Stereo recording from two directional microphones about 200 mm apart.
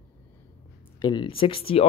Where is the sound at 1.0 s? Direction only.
25° left (ahead or behind).